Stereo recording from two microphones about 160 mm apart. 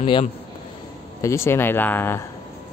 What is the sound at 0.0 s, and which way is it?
Speech, 30° left (ahead or behind).